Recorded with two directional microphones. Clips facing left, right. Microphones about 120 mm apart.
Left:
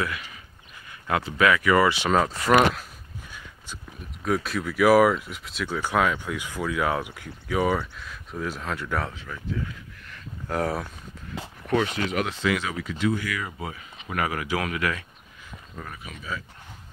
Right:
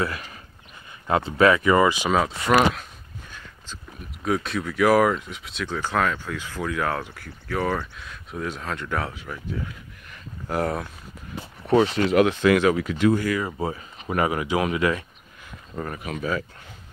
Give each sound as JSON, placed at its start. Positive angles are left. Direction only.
{"t": 0.0, "sound": "speech", "side_deg": -40}
{"t": 1.0, "sound": "speech", "side_deg": -25}
{"t": 2.1, "sound": "zipper", "side_deg": 0}
{"t": 4.2, "sound": "speech", "side_deg": 0}
{"t": 8.0, "sound": "speech", "side_deg": 0}
{"t": 9.2, "sound": "speech", "side_deg": -15}
{"t": 10.6, "sound": "speech", "side_deg": 0}
{"t": 11.6, "sound": "speech", "side_deg": -30}
{"t": 12.3, "sound": "speech", "side_deg": -55}
{"t": 15.7, "sound": "speech", "side_deg": -55}